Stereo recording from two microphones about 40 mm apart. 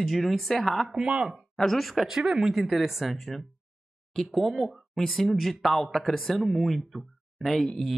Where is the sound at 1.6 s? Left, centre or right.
Centre.